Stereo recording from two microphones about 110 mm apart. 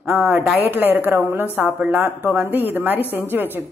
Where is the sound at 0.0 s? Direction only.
15° right (ahead or behind).